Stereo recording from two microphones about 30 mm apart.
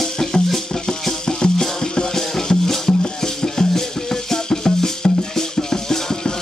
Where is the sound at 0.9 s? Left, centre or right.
Left.